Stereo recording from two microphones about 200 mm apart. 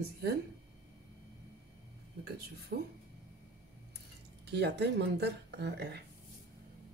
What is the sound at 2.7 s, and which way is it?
Speech, 50° right (ahead or behind).